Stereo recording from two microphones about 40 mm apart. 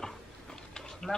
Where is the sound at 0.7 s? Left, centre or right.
Centre.